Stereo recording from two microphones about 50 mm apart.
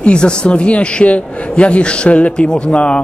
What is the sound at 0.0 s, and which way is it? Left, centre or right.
A man's voice, centre.